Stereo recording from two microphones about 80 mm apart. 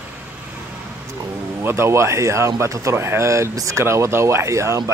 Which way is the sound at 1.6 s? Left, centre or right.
Right.